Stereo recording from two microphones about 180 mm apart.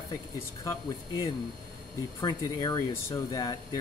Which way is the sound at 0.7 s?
20° left (ahead or behind).